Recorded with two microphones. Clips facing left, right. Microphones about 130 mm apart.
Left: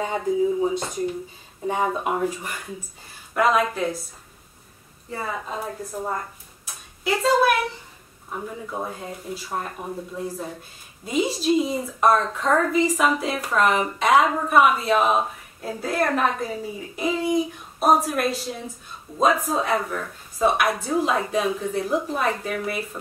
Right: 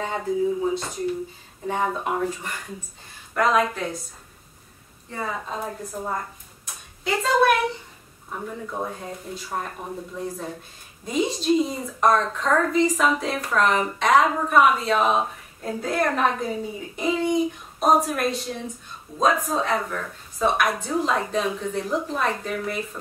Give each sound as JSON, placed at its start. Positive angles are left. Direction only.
{"t": 0.0, "sound": "a woman's voice", "side_deg": 15}
{"t": 5.1, "sound": "a woman's voice", "side_deg": 5}
{"t": 6.6, "sound": "a sound", "side_deg": 5}
{"t": 8.3, "sound": "a woman's voice", "side_deg": 5}